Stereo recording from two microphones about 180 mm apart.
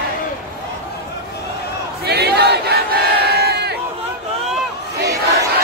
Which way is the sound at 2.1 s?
65° right (ahead or behind).